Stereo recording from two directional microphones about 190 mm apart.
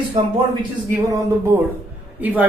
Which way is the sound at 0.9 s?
10° right (ahead or behind).